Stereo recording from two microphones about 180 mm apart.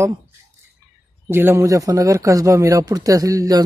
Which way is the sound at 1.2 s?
15° right (ahead or behind).